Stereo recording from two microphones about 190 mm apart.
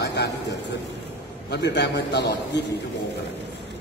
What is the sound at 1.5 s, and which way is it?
Speech, 65° left (ahead or behind).